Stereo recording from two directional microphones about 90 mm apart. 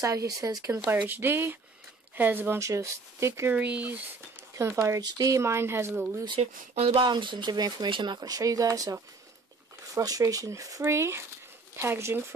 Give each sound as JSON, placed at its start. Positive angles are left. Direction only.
{"t": 0.0, "sound": "speech", "side_deg": -35}
{"t": 0.7, "sound": "speech", "side_deg": -20}
{"t": 3.5, "sound": "speech", "side_deg": -15}
{"t": 4.6, "sound": "speech", "side_deg": -30}
{"t": 5.0, "sound": "speech", "side_deg": -40}
{"t": 6.2, "sound": "speech", "side_deg": -65}
{"t": 9.9, "sound": "speech", "side_deg": -40}